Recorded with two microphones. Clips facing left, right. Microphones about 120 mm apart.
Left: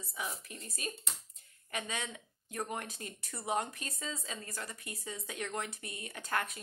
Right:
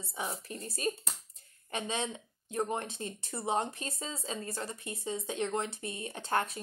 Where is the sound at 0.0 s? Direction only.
30° right (ahead or behind).